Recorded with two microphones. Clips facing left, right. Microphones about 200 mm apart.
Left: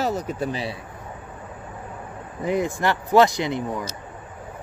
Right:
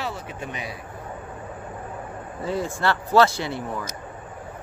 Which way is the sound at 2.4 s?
15° left (ahead or behind).